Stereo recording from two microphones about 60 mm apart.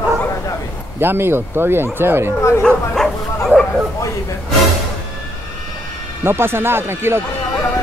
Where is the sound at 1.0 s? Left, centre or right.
Right.